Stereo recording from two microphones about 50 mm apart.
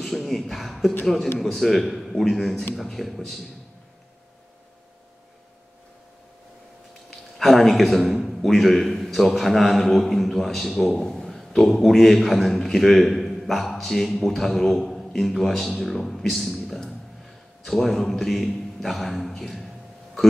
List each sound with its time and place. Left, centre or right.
0.0 s a man's voice: centre
7.1 s a sound: centre
8.0 s a man's voice: centre
11.0 s a man's voice: centre
11.2 s a man's voice: centre